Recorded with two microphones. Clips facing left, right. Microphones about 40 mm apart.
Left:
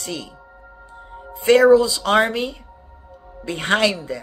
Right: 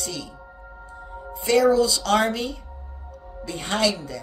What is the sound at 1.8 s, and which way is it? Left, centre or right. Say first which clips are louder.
Speech: left 2 dB; left.